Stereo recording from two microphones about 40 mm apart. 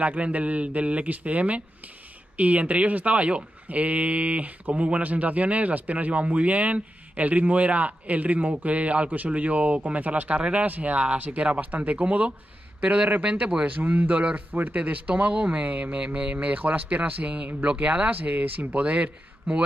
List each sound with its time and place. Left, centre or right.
0.0 s speech: right
13.7 s speech: right
14.8 s speech: right
15.2 s speech: right
18.7 s speech: right